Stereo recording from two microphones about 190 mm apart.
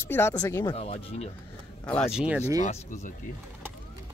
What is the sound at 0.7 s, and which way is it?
Speech, 30° left (ahead or behind).